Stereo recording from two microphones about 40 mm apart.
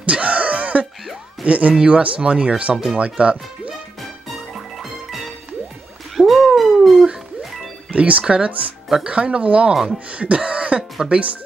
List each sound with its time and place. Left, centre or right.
0.0 s a sound: right
1.4 s speech: right
2.7 s speech: centre
3.0 s speech: right
4.3 s music: centre
6.1 s dog: centre
7.9 s speech: right